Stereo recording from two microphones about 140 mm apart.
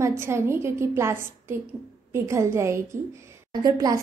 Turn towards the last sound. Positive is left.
turn(degrees=-25)  # may be behind; listen again after turning